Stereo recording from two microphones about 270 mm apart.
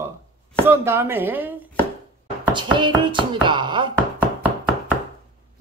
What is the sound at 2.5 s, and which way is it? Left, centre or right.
Speech, centre.